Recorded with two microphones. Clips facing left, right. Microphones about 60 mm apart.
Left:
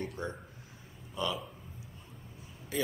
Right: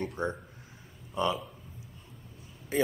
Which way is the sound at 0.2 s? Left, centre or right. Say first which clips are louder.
Right 6 dB; right.